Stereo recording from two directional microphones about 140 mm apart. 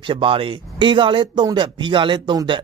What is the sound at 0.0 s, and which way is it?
Speech, 35° right (ahead or behind).